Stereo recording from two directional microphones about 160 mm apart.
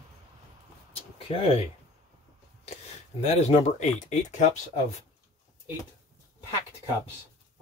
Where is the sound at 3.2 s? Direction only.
45° left (ahead or behind).